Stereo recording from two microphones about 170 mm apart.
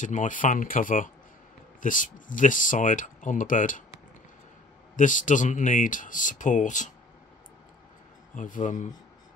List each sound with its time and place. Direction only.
0.0 s speech: 50° left (ahead or behind)
4.9 s speech: 50° left (ahead or behind)
8.4 s speech: 50° left (ahead or behind)